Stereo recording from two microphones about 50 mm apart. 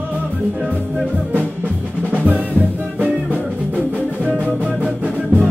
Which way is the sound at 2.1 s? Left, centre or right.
Right.